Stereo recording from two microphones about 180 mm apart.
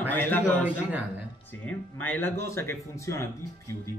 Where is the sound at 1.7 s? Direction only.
10° left (ahead or behind).